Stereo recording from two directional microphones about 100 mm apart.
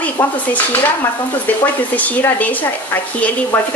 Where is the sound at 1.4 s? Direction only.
15° left (ahead or behind).